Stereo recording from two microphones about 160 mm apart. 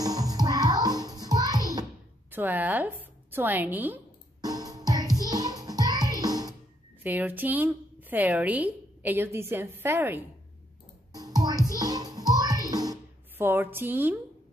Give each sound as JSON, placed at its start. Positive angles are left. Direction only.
{"t": 0.0, "sound": "music", "side_deg": -25}
{"t": 2.3, "sound": "a woman's voice", "side_deg": -10}
{"t": 4.4, "sound": "music", "side_deg": -25}
{"t": 7.0, "sound": "a woman's voice", "side_deg": -10}
{"t": 11.1, "sound": "music", "side_deg": -25}
{"t": 13.5, "sound": "a woman's voice", "side_deg": -15}